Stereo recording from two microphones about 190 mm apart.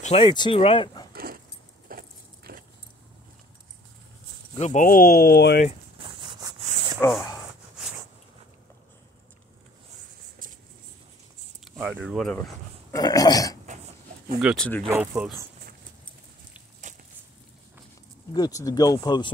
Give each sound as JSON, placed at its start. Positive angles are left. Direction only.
{"t": 0.0, "sound": "speech", "side_deg": 30}
{"t": 1.1, "sound": "a sound", "side_deg": -50}
{"t": 1.9, "sound": "vehicle", "side_deg": -50}
{"t": 4.6, "sound": "speech", "side_deg": 40}
{"t": 6.0, "sound": "a sound", "side_deg": -25}
{"t": 7.0, "sound": "speech", "side_deg": 5}
{"t": 10.4, "sound": "a sound", "side_deg": -45}
{"t": 11.6, "sound": "speech", "side_deg": -5}
{"t": 12.9, "sound": "speech", "side_deg": 20}
{"t": 14.4, "sound": "speech", "side_deg": 0}
{"t": 16.8, "sound": "a sound", "side_deg": -40}
{"t": 18.3, "sound": "speech", "side_deg": 20}